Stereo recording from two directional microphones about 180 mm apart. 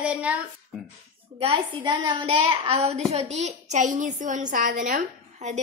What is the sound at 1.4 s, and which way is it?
A woman's voice, 25° right (ahead or behind).